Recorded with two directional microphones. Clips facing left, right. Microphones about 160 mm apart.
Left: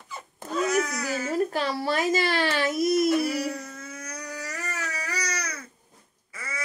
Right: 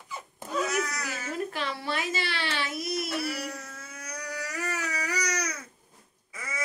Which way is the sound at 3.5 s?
5° right (ahead or behind).